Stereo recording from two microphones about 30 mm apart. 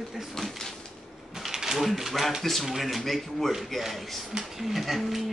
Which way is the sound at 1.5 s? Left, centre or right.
Centre.